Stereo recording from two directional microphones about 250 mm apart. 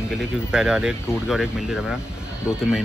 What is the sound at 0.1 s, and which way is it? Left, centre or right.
Speech, centre.